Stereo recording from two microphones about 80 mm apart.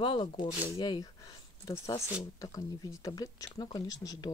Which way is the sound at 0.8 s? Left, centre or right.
Left.